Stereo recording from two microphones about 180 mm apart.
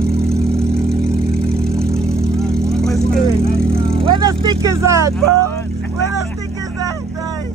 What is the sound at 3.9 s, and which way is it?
Vehicle, 25° right (ahead or behind).